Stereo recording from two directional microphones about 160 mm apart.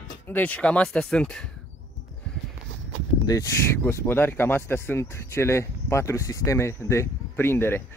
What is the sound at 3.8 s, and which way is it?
Speech, 15° left (ahead or behind).